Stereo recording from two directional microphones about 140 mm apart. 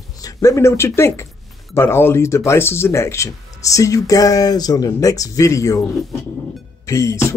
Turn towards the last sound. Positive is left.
turn(degrees=20)  # may be behind; listen again after turning